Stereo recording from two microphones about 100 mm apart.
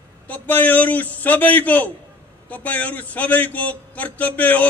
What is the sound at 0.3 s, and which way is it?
A man's voice, 15° left (ahead or behind).